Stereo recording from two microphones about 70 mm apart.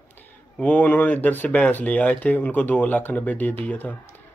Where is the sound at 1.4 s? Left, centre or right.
Centre.